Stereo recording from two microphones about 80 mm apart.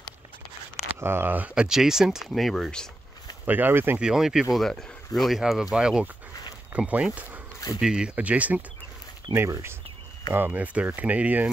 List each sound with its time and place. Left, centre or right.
0.8 s speech: right
1.5 s speech: centre
3.4 s speech: right
4.0 s speech: centre
8.2 s speech: centre
9.3 s speech: right; by 11.4 s centre